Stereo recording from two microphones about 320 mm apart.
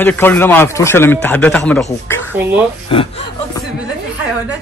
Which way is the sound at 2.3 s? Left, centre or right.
Centre.